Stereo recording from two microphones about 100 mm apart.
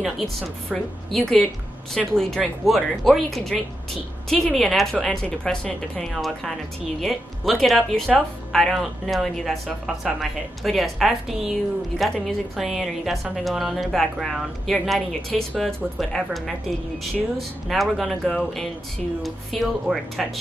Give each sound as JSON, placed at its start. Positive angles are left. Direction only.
{"t": 0.0, "sound": "a woman's voice", "side_deg": 0}